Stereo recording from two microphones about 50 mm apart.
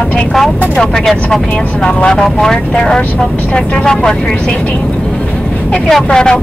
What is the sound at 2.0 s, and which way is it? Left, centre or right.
Speech, centre.